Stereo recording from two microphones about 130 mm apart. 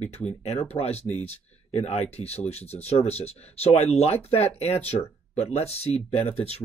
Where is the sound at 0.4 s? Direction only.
55° left (ahead or behind).